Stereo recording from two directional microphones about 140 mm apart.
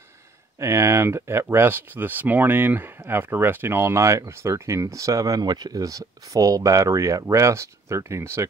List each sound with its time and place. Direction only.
0.6 s speech: 20° right (ahead or behind)